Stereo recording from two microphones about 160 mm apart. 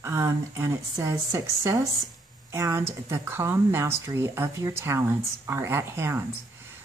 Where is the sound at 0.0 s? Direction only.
15° right (ahead or behind).